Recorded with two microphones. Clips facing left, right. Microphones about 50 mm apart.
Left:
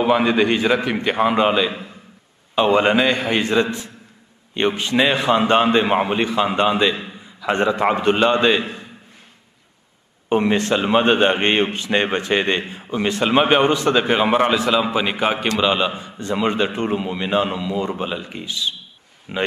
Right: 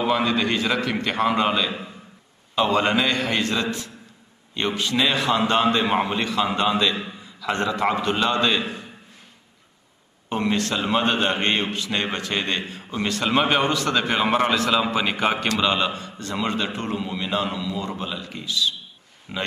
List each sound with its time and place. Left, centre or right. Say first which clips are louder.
0.0 s a man's voice: left 5 dB; left
10.3 s a man's voice: left 6 dB; left